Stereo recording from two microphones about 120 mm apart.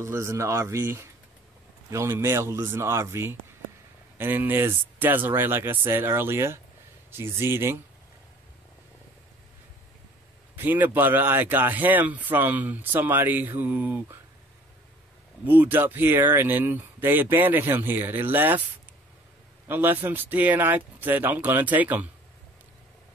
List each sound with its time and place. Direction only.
0.0 s a man's voice: 25° right (ahead or behind)
10.5 s a man's voice: 15° right (ahead or behind)
15.4 s a man's voice: 15° right (ahead or behind)
19.7 s a man's voice: 15° right (ahead or behind)